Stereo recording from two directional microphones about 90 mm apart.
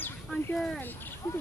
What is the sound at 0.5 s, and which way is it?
Speech, 5° left (ahead or behind).